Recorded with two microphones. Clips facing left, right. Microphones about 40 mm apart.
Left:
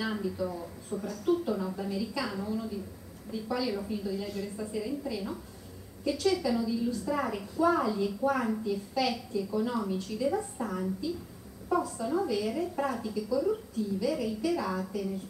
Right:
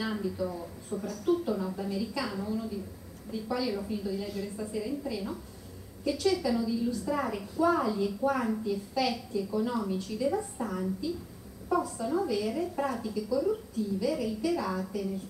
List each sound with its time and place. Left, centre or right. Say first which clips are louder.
0.0 s a woman's voice: even; centre